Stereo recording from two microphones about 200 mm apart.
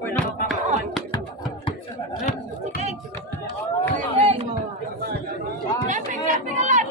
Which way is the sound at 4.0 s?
30° right (ahead or behind).